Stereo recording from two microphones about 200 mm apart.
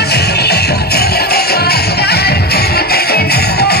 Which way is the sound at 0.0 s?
55° left (ahead or behind).